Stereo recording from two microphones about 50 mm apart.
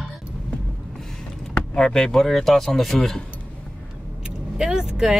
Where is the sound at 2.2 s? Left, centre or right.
Centre.